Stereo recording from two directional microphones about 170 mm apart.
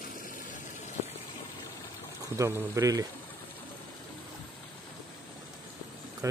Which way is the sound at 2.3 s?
20° right (ahead or behind).